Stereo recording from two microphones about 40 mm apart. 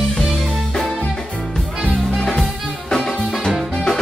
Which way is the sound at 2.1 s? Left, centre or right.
Centre.